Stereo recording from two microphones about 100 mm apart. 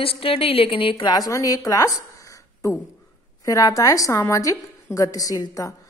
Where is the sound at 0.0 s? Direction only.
70° left (ahead or behind); by 1.2 s 50° left (ahead or behind).